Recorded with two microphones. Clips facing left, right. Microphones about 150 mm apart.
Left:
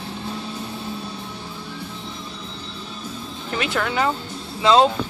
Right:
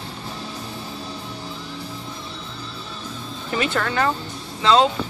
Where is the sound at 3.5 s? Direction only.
Centre (ahead or behind).